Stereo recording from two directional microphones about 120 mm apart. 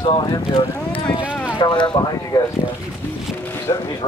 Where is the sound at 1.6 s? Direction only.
40° left (ahead or behind).